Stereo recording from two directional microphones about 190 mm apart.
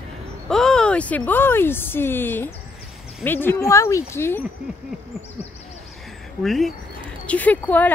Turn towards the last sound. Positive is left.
turn(degrees=10)  # may be behind; listen again after turning